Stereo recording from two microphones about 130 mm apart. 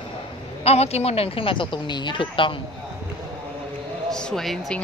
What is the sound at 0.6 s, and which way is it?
A woman's voice, 55° left (ahead or behind).